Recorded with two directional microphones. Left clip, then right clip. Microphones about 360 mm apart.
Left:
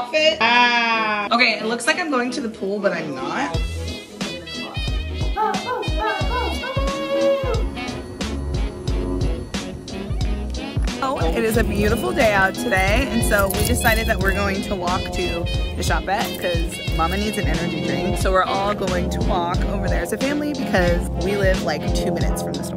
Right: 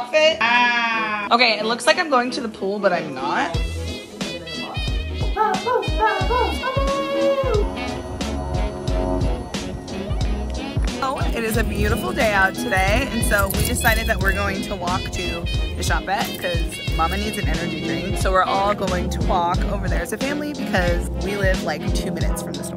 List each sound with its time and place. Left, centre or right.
0.1 s music: centre
1.4 s a woman's voice: centre
5.4 s music: centre
11.0 s speech: centre